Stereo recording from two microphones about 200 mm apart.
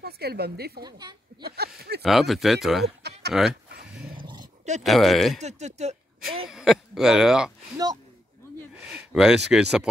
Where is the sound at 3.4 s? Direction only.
50° right (ahead or behind).